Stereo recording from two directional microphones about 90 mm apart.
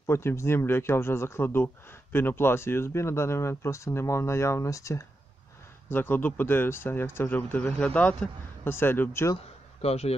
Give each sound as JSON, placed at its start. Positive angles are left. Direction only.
{"t": 0.0, "sound": "speech", "side_deg": 30}
{"t": 5.9, "sound": "speech", "side_deg": 20}